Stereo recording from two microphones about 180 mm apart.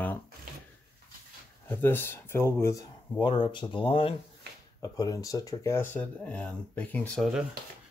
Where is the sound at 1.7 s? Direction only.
10° left (ahead or behind).